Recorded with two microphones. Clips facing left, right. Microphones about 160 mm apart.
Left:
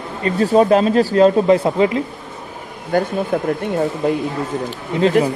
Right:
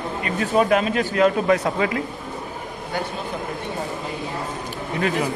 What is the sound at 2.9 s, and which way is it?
Speech, 50° left (ahead or behind).